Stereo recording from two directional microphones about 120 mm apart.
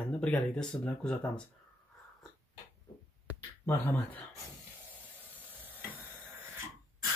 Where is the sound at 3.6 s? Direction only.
20° left (ahead or behind).